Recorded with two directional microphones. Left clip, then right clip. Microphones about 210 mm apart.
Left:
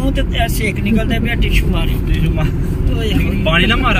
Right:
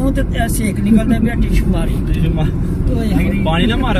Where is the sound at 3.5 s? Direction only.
15° left (ahead or behind).